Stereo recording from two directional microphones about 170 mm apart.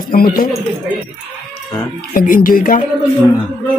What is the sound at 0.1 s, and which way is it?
Speech, 60° left (ahead or behind).